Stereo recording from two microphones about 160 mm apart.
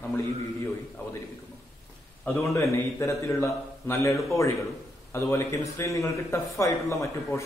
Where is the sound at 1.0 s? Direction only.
10° left (ahead or behind).